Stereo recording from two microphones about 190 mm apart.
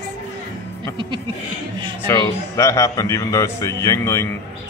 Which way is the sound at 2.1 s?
15° left (ahead or behind).